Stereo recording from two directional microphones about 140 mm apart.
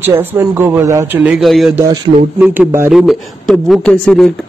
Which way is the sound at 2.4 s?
10° right (ahead or behind).